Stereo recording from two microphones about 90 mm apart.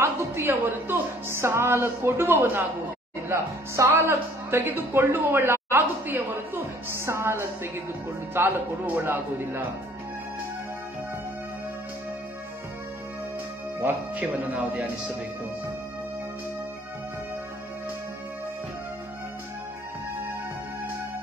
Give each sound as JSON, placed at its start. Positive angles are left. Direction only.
{"t": 0.0, "sound": "speech", "side_deg": -30}
{"t": 13.7, "sound": "speech", "side_deg": -25}